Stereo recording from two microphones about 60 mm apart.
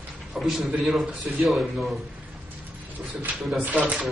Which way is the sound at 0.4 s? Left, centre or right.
Centre.